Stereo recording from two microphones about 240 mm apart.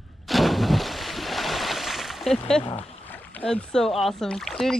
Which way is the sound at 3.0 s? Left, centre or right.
Centre.